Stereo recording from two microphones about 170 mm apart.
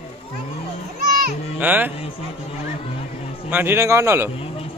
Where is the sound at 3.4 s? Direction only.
10° right (ahead or behind).